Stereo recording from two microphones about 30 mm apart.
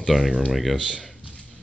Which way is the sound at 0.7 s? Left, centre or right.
Right.